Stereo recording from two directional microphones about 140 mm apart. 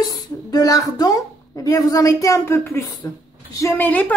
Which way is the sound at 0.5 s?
25° left (ahead or behind).